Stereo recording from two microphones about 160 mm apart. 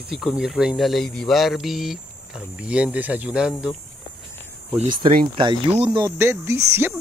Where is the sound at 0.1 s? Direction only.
Centre (ahead or behind).